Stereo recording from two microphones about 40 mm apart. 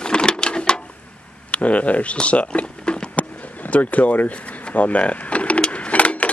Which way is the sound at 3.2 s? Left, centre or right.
Left.